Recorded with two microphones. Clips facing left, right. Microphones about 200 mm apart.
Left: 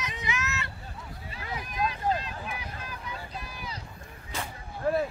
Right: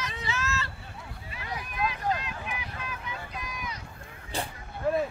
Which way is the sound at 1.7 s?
30° left (ahead or behind).